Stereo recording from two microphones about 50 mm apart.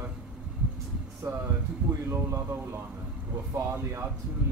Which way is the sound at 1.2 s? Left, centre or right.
Right.